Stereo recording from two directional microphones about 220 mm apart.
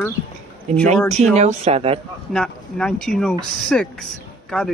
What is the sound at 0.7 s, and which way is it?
Speech, 30° right (ahead or behind).